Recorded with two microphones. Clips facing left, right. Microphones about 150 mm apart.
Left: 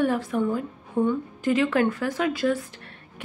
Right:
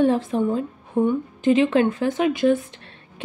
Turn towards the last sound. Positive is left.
turn(degrees=-20)  # may be behind; listen again after turning